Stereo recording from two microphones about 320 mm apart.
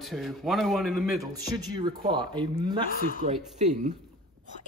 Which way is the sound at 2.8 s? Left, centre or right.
Left.